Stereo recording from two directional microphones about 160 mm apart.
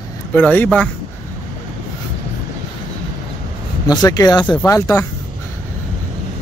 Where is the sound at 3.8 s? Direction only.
25° left (ahead or behind).